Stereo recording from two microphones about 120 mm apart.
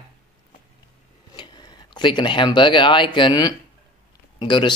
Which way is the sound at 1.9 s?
40° left (ahead or behind).